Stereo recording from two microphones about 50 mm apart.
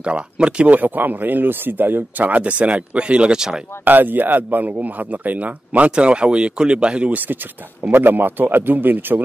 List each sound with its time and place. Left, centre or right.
0.0 s speech: right
0.7 s a man's voice: right; by 3.6 s centre
3.8 s a man's voice: right
7.9 s a man's voice: right